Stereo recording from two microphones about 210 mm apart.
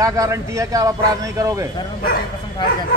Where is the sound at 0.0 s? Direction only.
15° right (ahead or behind).